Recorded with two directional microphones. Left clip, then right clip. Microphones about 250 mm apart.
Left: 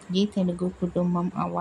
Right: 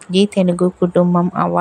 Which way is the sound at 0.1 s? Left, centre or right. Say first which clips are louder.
Right 12 dB; right.